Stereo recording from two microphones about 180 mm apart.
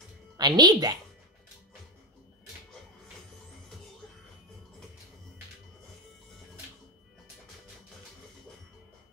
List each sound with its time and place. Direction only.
0.4 s a woman's voice: 25° right (ahead or behind)